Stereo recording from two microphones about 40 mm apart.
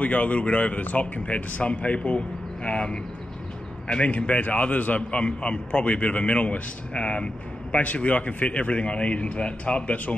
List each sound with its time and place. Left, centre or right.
0.0 s a man's voice: left